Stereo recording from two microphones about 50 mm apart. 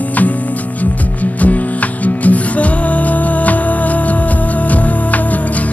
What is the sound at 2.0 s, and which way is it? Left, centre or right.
Music, left.